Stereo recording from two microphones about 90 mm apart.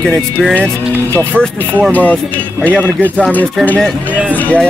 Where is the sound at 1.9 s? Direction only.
20° left (ahead or behind).